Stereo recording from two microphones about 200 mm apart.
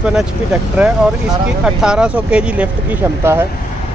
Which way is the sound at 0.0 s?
5° right (ahead or behind).